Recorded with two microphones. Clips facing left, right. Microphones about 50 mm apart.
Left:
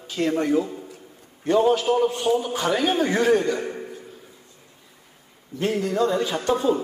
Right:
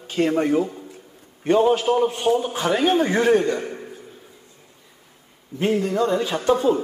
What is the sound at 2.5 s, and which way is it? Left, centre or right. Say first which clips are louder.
Speech: right 1 dB; centre.